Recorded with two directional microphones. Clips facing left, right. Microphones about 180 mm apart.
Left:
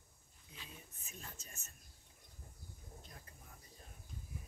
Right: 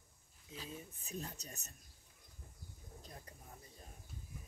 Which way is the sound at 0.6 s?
40° right (ahead or behind).